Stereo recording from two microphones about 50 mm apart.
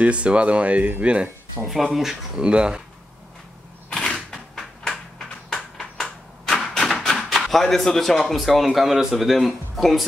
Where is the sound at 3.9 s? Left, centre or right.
Centre.